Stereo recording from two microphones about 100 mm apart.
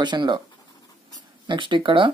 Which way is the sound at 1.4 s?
50° right (ahead or behind).